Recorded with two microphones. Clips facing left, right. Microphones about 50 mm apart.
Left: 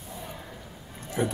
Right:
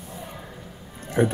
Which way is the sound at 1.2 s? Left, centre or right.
Right.